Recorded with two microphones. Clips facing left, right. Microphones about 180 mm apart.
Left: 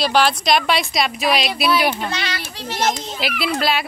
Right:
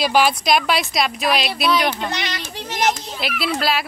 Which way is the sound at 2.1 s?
20° right (ahead or behind).